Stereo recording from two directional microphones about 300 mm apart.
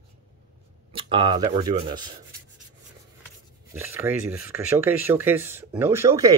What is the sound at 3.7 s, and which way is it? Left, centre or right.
Speech, centre.